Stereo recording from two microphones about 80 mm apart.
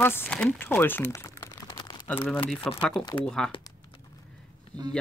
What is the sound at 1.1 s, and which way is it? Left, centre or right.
Crumpling, left.